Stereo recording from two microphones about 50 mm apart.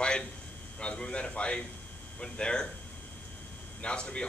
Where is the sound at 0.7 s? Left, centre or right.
Left.